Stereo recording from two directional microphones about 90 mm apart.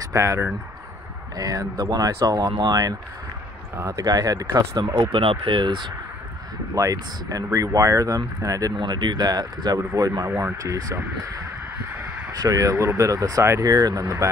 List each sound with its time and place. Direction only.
0.0 s speech: 35° right (ahead or behind)
1.3 s speech: 45° right (ahead or behind)
3.7 s speech: 30° right (ahead or behind)
4.0 s speech: 40° right (ahead or behind)
5.1 s speech: 90° right; by 5.9 s 60° right (ahead or behind)
6.7 s speech: 40° right (ahead or behind)
8.7 s speech: 60° right (ahead or behind); by 10.1 s 40° right (ahead or behind)
10.2 s speech: 20° right (ahead or behind)
10.6 s speech: 40° right (ahead or behind)
12.4 s speech: 40° right (ahead or behind)